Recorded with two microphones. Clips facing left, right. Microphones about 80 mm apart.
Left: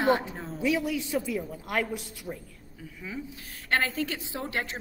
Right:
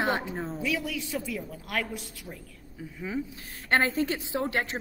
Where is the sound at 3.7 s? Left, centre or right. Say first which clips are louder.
Right 3 dB; right.